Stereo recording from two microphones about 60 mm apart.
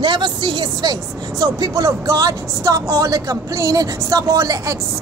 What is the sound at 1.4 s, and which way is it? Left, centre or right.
Speech, right.